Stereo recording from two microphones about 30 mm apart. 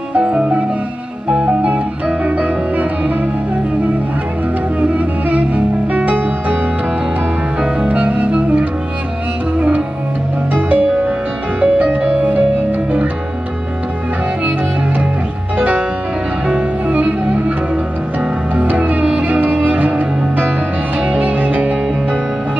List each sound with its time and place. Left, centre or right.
0.3 s music: right
2.2 s music: right
4.7 s music: right
7.9 s music: right
10.5 s music: right
15.5 s music: right
16.4 s music: right
18.6 s music: right